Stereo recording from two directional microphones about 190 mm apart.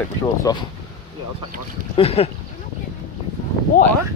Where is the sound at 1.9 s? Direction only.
30° left (ahead or behind).